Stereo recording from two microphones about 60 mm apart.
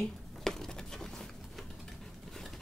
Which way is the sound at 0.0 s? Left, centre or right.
Centre.